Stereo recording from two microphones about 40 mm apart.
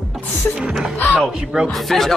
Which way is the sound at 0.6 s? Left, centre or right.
Right.